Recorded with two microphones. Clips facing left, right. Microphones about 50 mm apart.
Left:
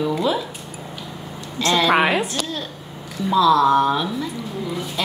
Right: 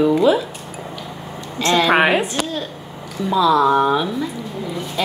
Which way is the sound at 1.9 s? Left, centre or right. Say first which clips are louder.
Right 3 dB; right.